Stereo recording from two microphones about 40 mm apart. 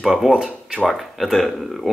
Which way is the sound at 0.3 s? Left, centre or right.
Right.